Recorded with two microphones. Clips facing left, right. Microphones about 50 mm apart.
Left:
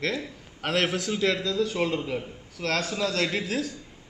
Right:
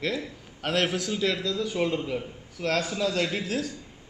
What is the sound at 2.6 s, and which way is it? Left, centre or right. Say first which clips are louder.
A man's voice: right 1 dB; centre.